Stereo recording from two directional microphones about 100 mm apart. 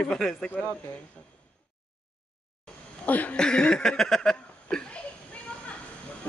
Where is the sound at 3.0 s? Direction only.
15° left (ahead or behind).